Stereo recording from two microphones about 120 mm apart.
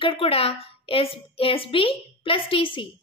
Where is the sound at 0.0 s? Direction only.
55° left (ahead or behind).